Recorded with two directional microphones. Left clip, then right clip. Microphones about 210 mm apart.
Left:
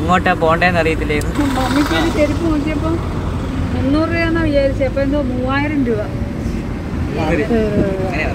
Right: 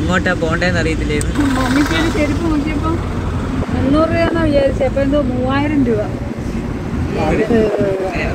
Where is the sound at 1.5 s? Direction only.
55° right (ahead or behind).